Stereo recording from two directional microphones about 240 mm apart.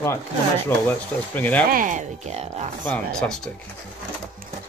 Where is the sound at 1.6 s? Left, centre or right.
Right.